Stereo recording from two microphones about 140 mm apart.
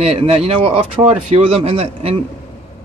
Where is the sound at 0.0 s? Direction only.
50° right (ahead or behind).